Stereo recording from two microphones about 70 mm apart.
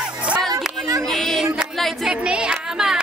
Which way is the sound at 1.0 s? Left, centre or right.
Centre.